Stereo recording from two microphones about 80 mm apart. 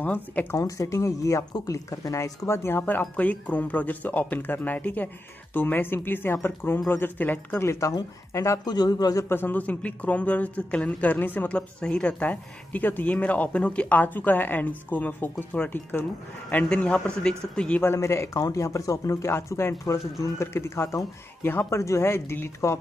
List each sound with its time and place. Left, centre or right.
0.0 s speech: centre
0.6 s speech: left
7.8 s speech: left
8.6 s speech: left
9.3 s speech: left
11.5 s speech: centre
16.6 s a man's voice: centre
17.9 s speech: left